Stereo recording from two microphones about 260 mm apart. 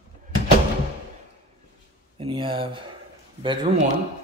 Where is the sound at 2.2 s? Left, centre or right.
Centre.